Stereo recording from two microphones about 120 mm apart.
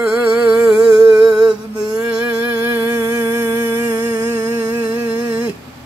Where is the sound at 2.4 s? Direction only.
20° right (ahead or behind).